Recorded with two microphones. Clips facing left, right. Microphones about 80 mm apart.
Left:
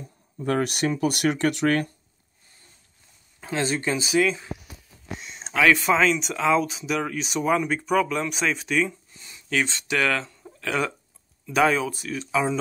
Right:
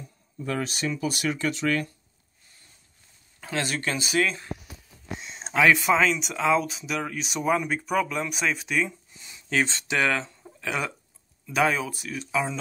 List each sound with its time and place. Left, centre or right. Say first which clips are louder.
0.0 s speech: left 5 dB; left
3.3 s a sound: left 2 dB; centre
3.8 s speech: left 3 dB; centre
5.2 s a sound: even; right
5.8 s speech: left 1 dB; centre
9.5 s speech: even; right
10.6 s speech: left 4 dB; centre